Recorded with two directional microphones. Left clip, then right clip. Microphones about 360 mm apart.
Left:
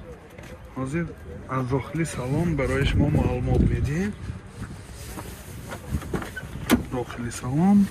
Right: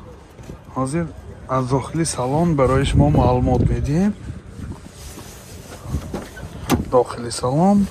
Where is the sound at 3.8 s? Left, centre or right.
Right.